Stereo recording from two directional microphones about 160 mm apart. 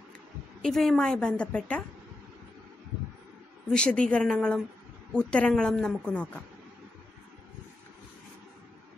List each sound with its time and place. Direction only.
0.6 s a woman's voice: centre (ahead or behind)
3.7 s a woman's voice: 5° left (ahead or behind)